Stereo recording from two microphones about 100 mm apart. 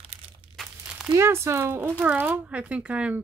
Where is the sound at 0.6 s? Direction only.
5° right (ahead or behind).